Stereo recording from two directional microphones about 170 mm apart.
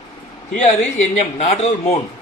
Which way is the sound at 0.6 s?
45° left (ahead or behind).